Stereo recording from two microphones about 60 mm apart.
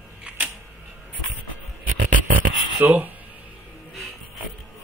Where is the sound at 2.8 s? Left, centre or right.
Right.